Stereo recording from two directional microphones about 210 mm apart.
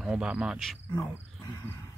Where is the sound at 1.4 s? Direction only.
15° left (ahead or behind).